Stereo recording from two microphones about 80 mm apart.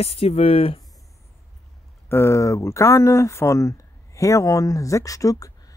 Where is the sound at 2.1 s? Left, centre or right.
Left.